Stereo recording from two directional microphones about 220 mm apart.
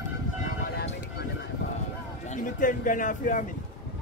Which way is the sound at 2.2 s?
35° left (ahead or behind).